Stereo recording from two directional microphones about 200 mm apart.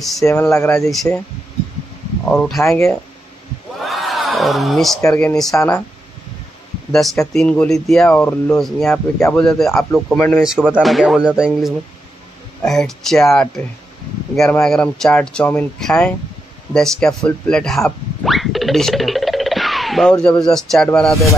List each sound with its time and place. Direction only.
0.2 s speech: 15° left (ahead or behind)
2.2 s speech: centre (ahead or behind)
2.6 s speech: 10° left (ahead or behind)
3.8 s a sound: centre (ahead or behind)
5.0 s speech: 5° left (ahead or behind)
6.9 s speech: centre (ahead or behind)
18.2 s music: centre (ahead or behind)